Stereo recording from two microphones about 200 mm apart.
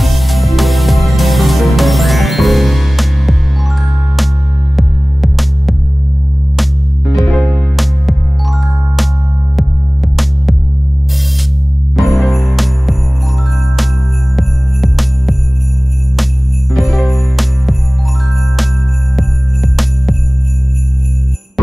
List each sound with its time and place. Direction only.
0.0 s music: centre (ahead or behind)
4.7 s music: centre (ahead or behind)
7.2 s music: centre (ahead or behind)
12.0 s music: centre (ahead or behind)
14.3 s jingle bell: centre (ahead or behind)
16.7 s jingle bell: centre (ahead or behind)
19.1 s jingle bell: centre (ahead or behind)